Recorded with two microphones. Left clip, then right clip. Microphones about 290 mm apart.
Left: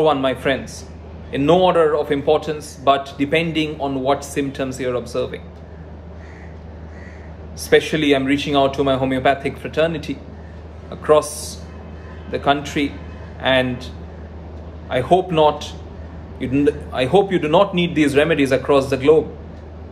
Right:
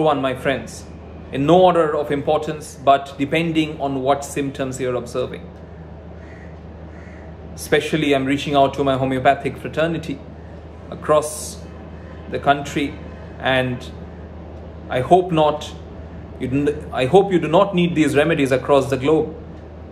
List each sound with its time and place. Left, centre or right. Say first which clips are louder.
0.0 s a man's voice: left 1 dB; centre
7.7 s a man's voice: left 2 dB; centre
12.3 s a man's voice: even; centre
14.9 s a man's voice: right 1 dB; centre